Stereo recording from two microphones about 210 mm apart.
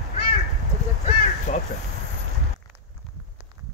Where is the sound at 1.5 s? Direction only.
35° left (ahead or behind).